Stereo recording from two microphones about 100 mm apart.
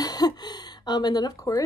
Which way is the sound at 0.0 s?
40° left (ahead or behind).